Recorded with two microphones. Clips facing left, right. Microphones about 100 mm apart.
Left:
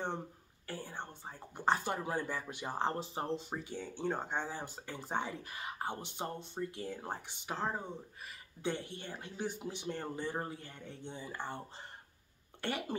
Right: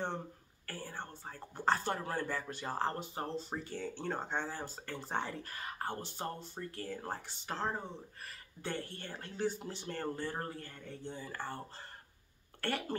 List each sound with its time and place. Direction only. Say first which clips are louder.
0.7 s speech: left 1 dB; 15° left (ahead or behind)
12.6 s speech: right 1 dB; 15° left (ahead or behind)